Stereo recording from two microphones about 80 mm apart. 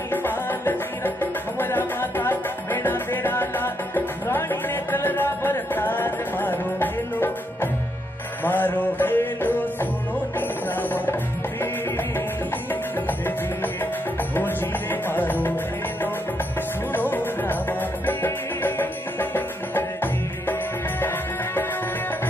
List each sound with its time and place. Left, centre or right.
0.1 s music: left
14.3 s music: left
16.9 s music: left